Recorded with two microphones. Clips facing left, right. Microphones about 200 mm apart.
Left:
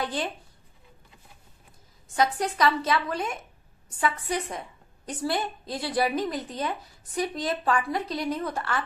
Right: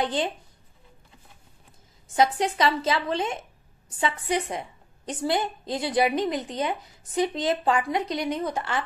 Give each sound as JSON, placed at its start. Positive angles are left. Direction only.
{"t": 0.0, "sound": "speech", "side_deg": -25}
{"t": 2.1, "sound": "a woman's voice", "side_deg": -25}